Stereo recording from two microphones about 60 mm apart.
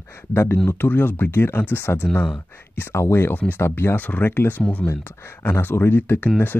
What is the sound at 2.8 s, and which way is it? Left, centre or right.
Speech, left.